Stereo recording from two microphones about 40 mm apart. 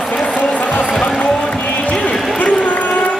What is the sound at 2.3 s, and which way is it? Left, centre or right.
Run, left.